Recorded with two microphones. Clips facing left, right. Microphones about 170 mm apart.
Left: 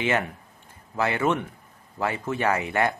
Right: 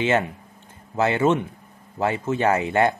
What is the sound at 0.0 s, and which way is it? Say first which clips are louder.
Speech: right 4 dB; 25° right (ahead or behind).